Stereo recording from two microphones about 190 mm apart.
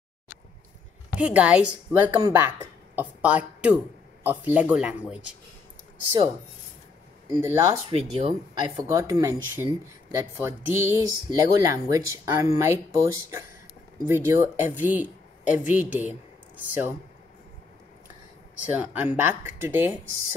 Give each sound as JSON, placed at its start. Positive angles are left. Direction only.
{"t": 1.1, "sound": "a woman's voice", "side_deg": -5}
{"t": 7.3, "sound": "speech", "side_deg": -10}
{"t": 7.9, "sound": "speech", "side_deg": -25}
{"t": 8.8, "sound": "speech", "side_deg": -15}
{"t": 18.8, "sound": "speech", "side_deg": -10}